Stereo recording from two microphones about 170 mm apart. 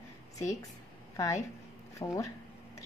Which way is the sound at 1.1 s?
20° left (ahead or behind).